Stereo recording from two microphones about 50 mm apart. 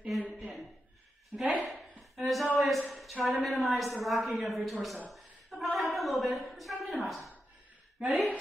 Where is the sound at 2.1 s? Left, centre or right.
Centre.